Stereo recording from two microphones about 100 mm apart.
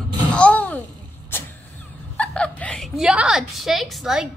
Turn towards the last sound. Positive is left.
turn(degrees=0)  # may be behind; listen again after turning